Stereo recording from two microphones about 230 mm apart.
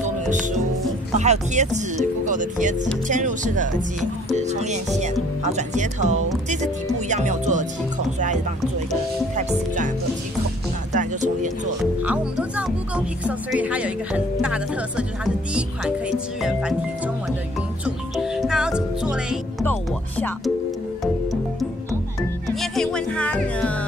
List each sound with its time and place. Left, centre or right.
1.1 s speech: right
9.3 s speech: right
10.9 s music: right
11.8 s speech: centre
17.8 s music: centre
20.2 s speech: centre
21.0 s music: centre
22.6 s speech: centre